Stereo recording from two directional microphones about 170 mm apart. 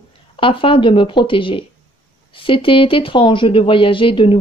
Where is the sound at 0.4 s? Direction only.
30° left (ahead or behind).